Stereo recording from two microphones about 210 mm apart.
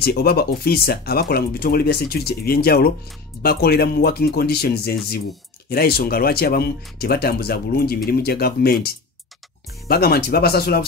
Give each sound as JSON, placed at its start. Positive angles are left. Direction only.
{"t": 0.0, "sound": "speech", "side_deg": 50}